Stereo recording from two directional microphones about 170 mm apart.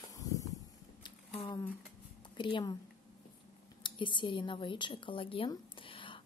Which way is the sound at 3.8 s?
30° left (ahead or behind).